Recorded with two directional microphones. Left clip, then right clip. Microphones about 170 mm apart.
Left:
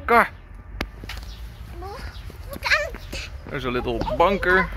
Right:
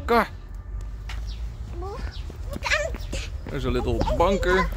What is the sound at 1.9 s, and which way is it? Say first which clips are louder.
Horse: even; 5° left (ahead or behind).